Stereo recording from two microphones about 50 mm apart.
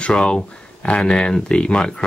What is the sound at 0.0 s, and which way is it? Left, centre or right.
Speech, centre.